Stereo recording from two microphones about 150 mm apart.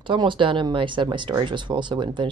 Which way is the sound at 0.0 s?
35° right (ahead or behind).